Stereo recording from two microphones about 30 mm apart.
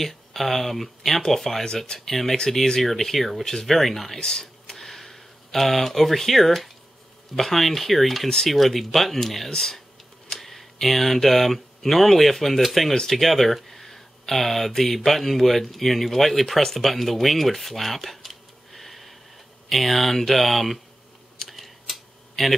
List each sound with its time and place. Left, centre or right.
0.0 s speech: centre
4.2 s a sound: centre
4.7 s a sound: centre
7.3 s speech: centre
10.3 s speech: centre
21.4 s typing: centre